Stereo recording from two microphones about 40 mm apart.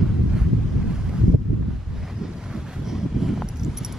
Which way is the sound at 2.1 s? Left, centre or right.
Centre.